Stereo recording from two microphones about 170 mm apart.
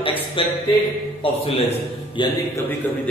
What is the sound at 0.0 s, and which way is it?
Music, 30° left (ahead or behind).